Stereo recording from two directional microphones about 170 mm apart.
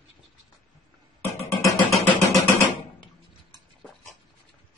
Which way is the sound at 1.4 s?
15° left (ahead or behind).